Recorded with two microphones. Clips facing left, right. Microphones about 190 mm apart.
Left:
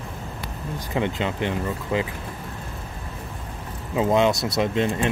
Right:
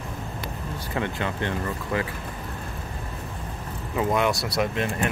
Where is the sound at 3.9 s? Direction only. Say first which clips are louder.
Left 4 dB; 25° left (ahead or behind).